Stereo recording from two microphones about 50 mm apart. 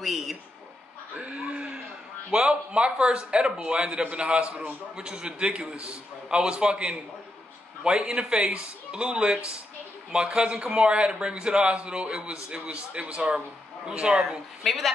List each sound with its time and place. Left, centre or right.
0.0 s a man's voice: centre
1.1 s a sound: right
2.3 s a man's voice: right
14.6 s a man's voice: centre